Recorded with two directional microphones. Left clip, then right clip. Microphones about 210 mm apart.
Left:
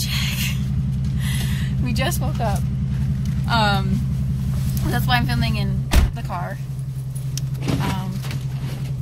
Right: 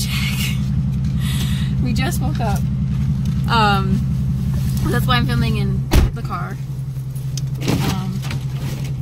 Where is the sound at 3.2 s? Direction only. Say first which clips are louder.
Right 3 dB; 20° right (ahead or behind).